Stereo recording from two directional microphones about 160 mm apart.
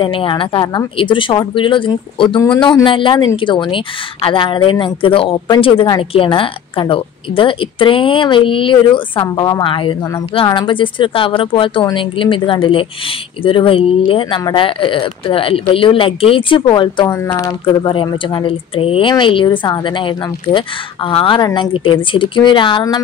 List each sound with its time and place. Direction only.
0.0 s speech: 35° left (ahead or behind)
17.1 s speech: 15° left (ahead or behind)